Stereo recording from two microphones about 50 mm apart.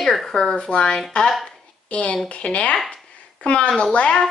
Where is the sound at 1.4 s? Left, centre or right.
Left.